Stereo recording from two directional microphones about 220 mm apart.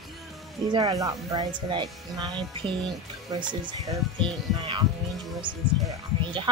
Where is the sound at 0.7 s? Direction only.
15° right (ahead or behind).